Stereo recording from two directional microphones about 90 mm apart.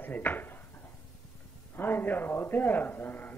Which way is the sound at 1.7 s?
20° left (ahead or behind).